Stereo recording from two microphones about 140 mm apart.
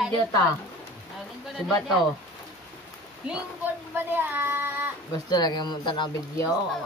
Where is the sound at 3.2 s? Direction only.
15° right (ahead or behind).